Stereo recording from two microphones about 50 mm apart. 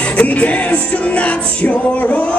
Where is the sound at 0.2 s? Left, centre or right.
Left.